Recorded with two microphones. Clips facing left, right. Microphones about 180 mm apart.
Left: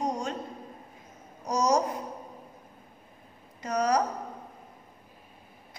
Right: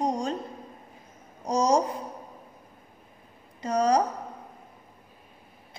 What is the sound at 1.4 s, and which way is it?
Speech, 30° right (ahead or behind).